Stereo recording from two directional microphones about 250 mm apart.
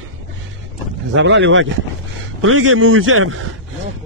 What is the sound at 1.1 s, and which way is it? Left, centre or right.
A man's voice, right.